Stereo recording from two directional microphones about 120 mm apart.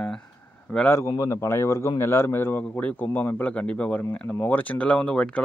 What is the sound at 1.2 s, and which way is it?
A man's voice, 25° left (ahead or behind).